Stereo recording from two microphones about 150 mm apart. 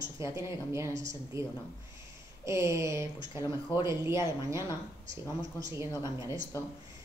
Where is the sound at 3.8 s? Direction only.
20° right (ahead or behind).